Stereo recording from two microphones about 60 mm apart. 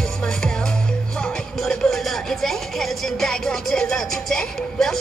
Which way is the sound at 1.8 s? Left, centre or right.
Centre.